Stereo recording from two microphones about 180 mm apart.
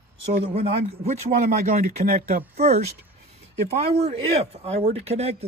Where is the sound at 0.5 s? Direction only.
35° right (ahead or behind).